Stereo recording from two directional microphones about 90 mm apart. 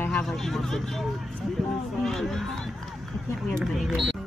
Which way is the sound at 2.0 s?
5° left (ahead or behind).